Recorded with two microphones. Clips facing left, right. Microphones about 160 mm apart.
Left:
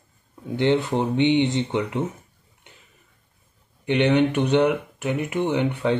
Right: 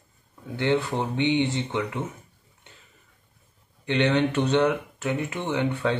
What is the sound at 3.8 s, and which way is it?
Speech, 15° left (ahead or behind).